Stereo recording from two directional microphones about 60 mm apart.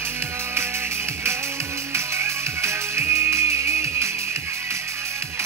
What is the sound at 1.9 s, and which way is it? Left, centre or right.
Music, right.